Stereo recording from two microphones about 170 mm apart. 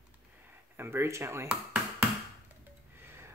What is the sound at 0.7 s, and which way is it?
Speech, 15° right (ahead or behind).